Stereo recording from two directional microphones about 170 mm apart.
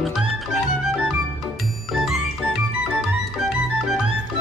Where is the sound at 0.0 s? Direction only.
Centre (ahead or behind).